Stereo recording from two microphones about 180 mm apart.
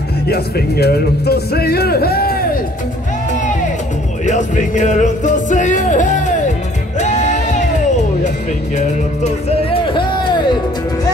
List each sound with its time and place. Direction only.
0.3 s speech: 60° left (ahead or behind)
4.3 s music: 45° left (ahead or behind)
9.9 s a sound: 25° left (ahead or behind)